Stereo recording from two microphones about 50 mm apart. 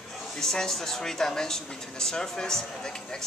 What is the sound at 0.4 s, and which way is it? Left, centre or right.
Speech, centre.